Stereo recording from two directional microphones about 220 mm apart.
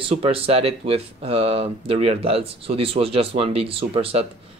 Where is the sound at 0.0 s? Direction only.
25° right (ahead or behind).